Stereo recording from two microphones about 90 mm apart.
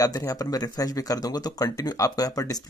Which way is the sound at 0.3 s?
40° left (ahead or behind).